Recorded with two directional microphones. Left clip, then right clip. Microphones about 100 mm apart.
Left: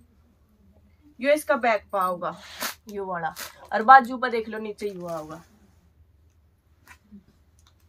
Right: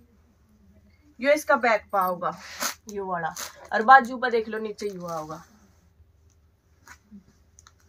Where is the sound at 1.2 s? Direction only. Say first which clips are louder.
Right 1 dB; 5° left (ahead or behind).